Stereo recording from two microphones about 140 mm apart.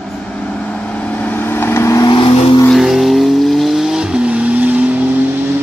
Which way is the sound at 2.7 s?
Centre (ahead or behind).